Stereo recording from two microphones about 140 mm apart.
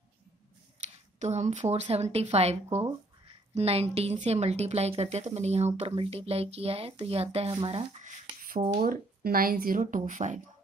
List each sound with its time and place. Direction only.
0.7 s speech: 50° right (ahead or behind)
8.0 s a sound: 65° right (ahead or behind)
8.8 s speech: 90° right; by 10.4 s 65° right (ahead or behind)